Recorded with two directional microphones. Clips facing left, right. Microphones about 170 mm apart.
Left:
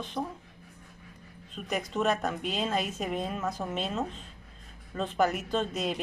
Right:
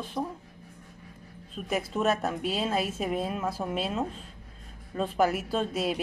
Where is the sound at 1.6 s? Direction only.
5° right (ahead or behind).